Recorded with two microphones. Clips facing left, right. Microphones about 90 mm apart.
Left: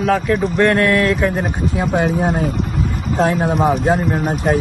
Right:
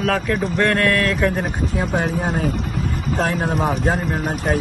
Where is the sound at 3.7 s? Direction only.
Centre (ahead or behind).